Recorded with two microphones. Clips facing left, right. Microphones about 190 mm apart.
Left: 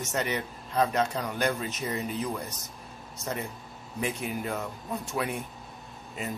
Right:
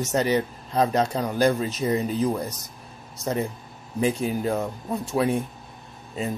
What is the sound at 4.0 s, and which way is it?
Speech, 30° right (ahead or behind).